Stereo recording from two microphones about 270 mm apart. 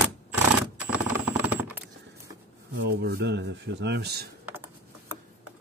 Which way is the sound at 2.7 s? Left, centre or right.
Right.